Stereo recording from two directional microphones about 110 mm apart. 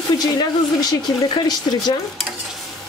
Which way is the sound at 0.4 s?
40° left (ahead or behind).